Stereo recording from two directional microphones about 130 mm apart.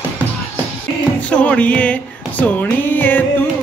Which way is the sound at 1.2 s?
10° left (ahead or behind).